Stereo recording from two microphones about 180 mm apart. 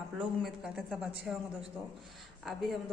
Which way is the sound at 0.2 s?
Centre (ahead or behind).